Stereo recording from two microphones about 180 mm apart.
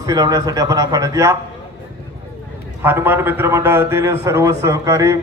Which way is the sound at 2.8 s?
10° right (ahead or behind).